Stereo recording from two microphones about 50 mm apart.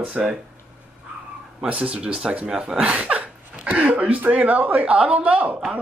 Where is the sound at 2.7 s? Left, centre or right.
Right.